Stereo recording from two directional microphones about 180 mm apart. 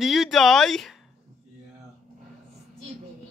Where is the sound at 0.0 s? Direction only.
Centre (ahead or behind).